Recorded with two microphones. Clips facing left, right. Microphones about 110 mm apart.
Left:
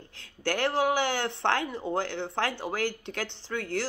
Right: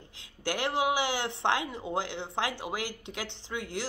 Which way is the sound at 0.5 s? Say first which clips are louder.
Left 3 dB; 15° right (ahead or behind).